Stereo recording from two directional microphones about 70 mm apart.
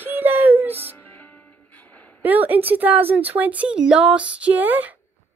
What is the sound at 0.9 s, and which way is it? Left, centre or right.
Music, left.